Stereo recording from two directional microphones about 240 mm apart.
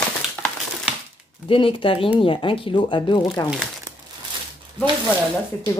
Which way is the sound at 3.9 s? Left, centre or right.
Centre.